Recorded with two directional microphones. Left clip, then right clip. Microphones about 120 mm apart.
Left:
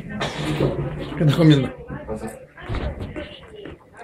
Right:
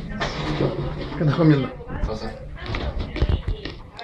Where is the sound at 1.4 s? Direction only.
20° left (ahead or behind).